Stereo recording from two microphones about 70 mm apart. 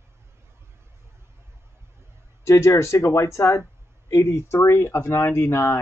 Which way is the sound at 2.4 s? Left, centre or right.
Left.